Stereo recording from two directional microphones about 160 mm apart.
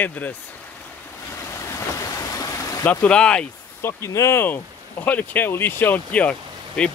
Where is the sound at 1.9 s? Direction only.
20° left (ahead or behind).